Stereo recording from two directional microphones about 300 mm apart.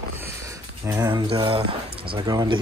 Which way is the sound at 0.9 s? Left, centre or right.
Centre.